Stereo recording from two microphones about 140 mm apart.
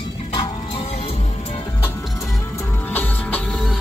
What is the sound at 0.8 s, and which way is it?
Music, 50° left (ahead or behind).